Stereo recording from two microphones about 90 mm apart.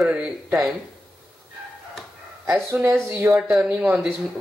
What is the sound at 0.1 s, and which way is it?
Speech, 10° right (ahead or behind).